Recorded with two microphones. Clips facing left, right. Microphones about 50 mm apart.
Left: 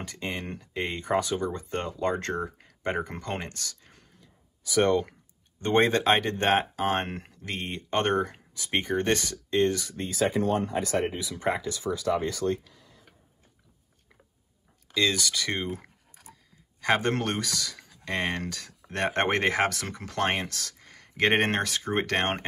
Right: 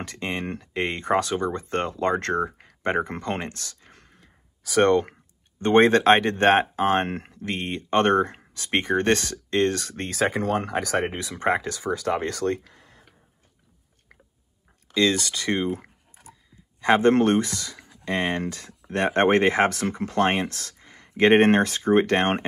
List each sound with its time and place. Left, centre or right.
0.0 s speech: right
3.9 s a sound: right
5.6 s speech: right
10.0 s speech: right
15.0 s speech: right
16.8 s speech: right